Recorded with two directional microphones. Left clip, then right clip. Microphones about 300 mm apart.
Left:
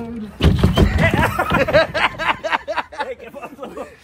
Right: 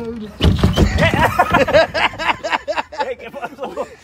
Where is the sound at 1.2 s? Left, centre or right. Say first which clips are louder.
Right 4 dB; right.